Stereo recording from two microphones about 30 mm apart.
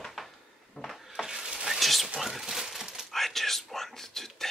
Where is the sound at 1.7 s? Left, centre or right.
Centre.